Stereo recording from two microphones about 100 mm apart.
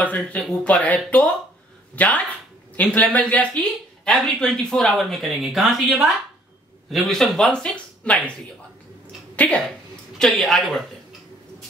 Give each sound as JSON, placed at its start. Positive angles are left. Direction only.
{"t": 0.0, "sound": "speech", "side_deg": 15}
{"t": 9.4, "sound": "a woman's voice", "side_deg": 10}